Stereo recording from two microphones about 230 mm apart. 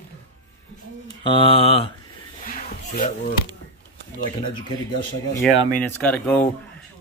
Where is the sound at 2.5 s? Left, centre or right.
Left.